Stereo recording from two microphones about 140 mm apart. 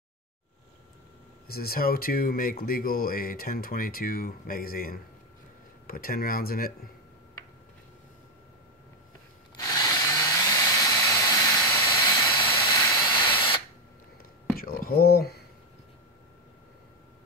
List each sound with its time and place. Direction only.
1.5 s speech: 90° left
9.6 s drill: 25° left (ahead or behind)
14.6 s speech: 90° left